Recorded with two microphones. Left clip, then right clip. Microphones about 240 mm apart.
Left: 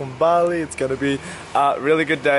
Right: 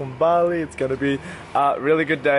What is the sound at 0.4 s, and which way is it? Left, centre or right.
Speech, centre.